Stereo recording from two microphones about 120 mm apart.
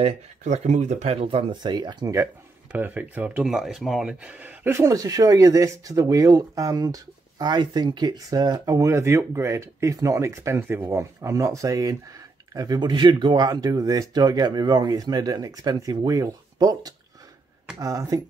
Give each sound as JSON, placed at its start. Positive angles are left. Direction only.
{"t": 0.0, "sound": "speech", "side_deg": -70}
{"t": 2.7, "sound": "speech", "side_deg": -15}
{"t": 3.4, "sound": "speech", "side_deg": -5}
{"t": 4.7, "sound": "speech", "side_deg": -30}